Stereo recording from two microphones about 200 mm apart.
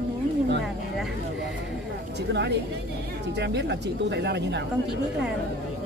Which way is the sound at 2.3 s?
55° right (ahead or behind).